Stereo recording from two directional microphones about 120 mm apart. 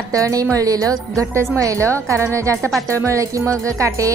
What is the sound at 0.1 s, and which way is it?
A woman's voice, 30° right (ahead or behind).